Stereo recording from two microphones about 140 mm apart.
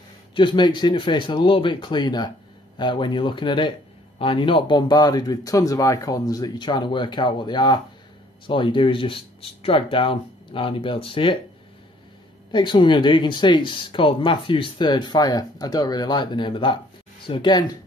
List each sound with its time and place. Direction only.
0.3 s speech: 35° left (ahead or behind)
12.4 s speech: 30° left (ahead or behind)